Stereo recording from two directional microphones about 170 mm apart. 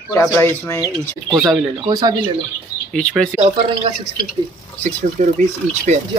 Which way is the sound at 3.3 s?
45° right (ahead or behind).